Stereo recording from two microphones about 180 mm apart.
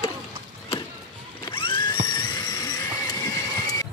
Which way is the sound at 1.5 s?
30° left (ahead or behind).